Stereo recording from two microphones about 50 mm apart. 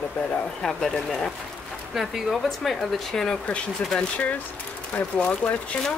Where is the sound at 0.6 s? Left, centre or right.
Centre.